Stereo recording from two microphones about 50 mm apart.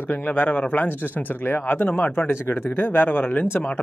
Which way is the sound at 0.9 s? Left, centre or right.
Left.